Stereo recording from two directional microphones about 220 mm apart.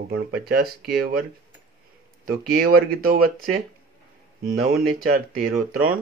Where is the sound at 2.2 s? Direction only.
45° right (ahead or behind).